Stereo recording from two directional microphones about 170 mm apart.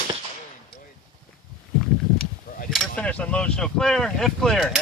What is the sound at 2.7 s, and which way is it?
Speech, 5° left (ahead or behind).